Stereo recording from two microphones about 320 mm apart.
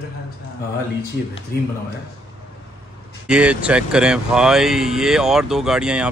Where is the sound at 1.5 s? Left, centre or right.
Left.